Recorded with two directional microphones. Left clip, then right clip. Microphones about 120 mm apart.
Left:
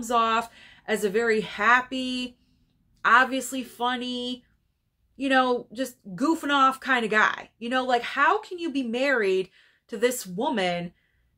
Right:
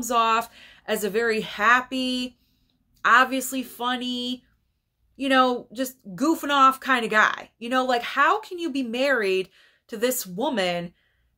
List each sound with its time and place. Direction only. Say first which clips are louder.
0.0 s a woman's voice: right 2 dB; 35° right (ahead or behind)